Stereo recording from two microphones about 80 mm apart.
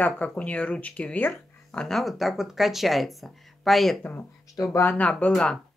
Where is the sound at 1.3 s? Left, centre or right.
Centre.